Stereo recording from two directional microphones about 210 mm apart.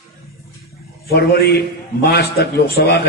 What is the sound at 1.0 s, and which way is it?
A man's voice, 50° left (ahead or behind).